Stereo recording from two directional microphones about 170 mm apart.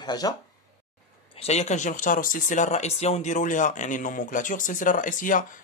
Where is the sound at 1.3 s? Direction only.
40° left (ahead or behind).